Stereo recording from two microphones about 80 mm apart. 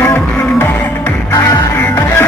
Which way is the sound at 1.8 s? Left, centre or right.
Left.